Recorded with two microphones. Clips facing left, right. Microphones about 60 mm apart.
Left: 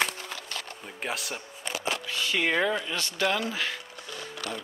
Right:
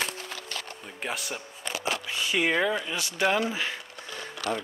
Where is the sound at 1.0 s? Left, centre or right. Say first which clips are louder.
Even; centre.